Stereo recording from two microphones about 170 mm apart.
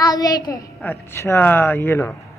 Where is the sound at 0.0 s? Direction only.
20° left (ahead or behind).